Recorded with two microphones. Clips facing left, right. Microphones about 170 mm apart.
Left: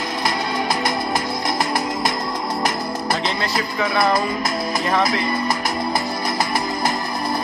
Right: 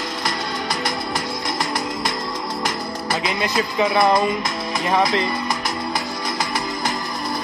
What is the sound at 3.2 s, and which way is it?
Speech, 15° right (ahead or behind).